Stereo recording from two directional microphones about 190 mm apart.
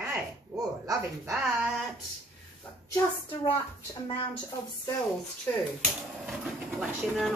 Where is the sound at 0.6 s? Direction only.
20° right (ahead or behind).